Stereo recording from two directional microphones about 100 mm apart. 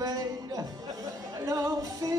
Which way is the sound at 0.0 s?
40° right (ahead or behind).